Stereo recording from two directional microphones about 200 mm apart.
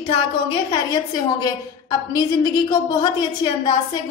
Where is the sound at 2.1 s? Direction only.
20° left (ahead or behind).